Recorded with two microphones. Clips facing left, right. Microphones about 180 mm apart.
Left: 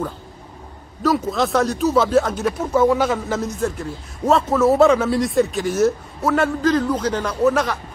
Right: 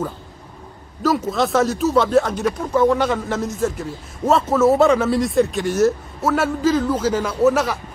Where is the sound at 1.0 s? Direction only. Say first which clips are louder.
Even; centre (ahead or behind).